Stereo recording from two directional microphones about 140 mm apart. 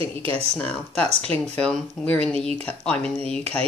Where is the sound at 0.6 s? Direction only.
10° left (ahead or behind).